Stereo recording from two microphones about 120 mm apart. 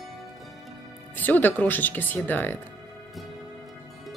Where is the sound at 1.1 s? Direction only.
15° left (ahead or behind).